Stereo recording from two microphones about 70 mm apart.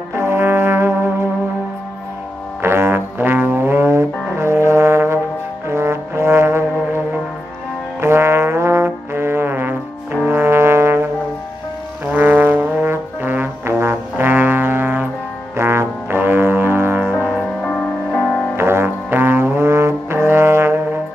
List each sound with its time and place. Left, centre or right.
0.1 s brass instrument: right
2.6 s music: right
5.7 s trombone: right
8.0 s trombone: right
10.2 s brass instrument: right
12.1 s trombone: right
15.5 s music: right
17.6 s music: centre
18.6 s music: right